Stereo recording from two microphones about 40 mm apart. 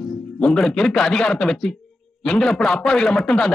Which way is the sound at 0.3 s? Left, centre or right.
Centre.